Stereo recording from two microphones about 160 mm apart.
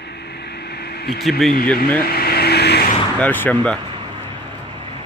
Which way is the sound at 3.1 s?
10° left (ahead or behind).